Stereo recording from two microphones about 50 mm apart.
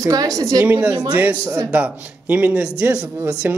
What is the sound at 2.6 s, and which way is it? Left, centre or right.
Speech, centre.